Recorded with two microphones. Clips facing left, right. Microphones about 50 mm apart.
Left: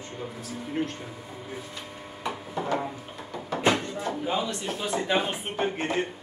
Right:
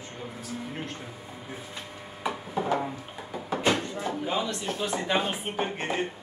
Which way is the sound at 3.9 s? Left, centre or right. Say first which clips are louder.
Left 1 dB; centre.